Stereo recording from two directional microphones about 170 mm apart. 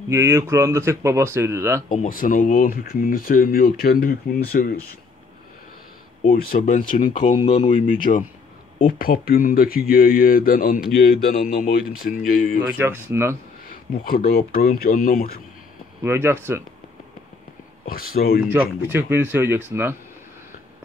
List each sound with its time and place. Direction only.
0.1 s speech: 15° right (ahead or behind)
1.9 s speech: 55° left (ahead or behind)
6.2 s speech: 60° left (ahead or behind)
12.6 s speech: 10° right (ahead or behind)
14.0 s speech: 60° left (ahead or behind)
16.0 s speech: 15° right (ahead or behind)
17.8 s speech: 60° left (ahead or behind)
18.5 s speech: 15° right (ahead or behind)